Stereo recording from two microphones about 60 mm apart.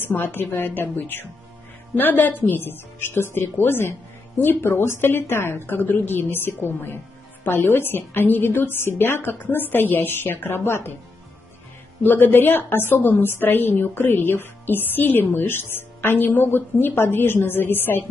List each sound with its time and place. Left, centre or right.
0.1 s a woman's voice: left
12.0 s a woman's voice: left